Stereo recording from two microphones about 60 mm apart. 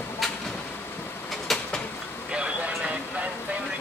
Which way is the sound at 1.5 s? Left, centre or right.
Centre.